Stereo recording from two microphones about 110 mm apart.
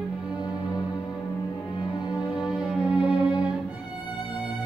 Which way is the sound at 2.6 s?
10° right (ahead or behind).